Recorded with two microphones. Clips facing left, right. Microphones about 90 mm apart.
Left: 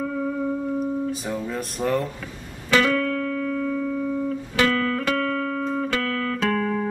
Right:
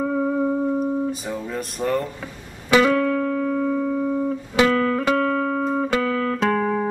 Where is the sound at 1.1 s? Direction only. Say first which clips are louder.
Even; centre (ahead or behind).